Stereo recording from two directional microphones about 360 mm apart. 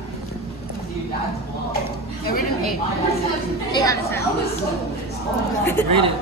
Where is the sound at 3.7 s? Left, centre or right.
Centre.